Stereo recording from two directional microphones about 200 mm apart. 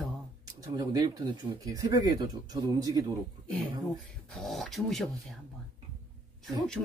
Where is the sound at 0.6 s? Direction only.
20° right (ahead or behind).